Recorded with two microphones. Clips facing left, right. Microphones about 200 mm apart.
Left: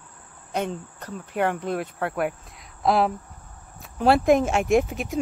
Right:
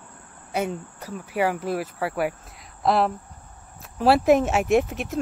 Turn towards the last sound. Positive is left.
turn(degrees=0)  # may be behind; listen again after turning